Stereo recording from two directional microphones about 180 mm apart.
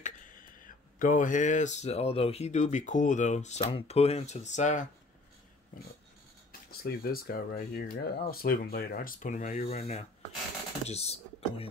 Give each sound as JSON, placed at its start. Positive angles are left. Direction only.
{"t": 0.0, "sound": "a sound", "side_deg": 50}
{"t": 0.9, "sound": "speech", "side_deg": 45}
{"t": 6.7, "sound": "speech", "side_deg": 55}